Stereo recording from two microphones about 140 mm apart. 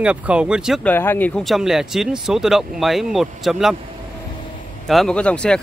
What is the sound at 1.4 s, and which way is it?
Speech, centre (ahead or behind).